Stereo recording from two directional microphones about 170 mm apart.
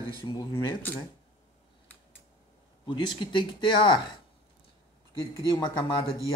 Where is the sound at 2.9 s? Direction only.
30° left (ahead or behind).